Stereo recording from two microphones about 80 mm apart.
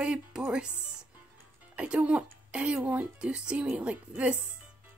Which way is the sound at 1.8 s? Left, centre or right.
Centre.